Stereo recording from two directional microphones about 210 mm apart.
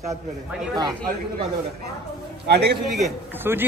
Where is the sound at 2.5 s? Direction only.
50° right (ahead or behind).